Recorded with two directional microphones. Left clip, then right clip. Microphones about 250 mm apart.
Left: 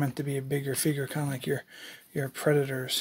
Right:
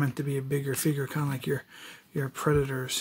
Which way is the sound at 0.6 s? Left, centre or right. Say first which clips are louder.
Even; centre.